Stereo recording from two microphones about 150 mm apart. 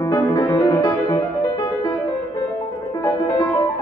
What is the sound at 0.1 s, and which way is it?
Music, 20° left (ahead or behind).